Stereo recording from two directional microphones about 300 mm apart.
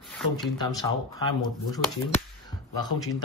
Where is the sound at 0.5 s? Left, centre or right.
Centre.